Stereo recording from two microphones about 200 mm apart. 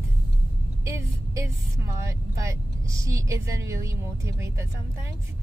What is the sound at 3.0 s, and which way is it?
A woman's voice, 15° right (ahead or behind).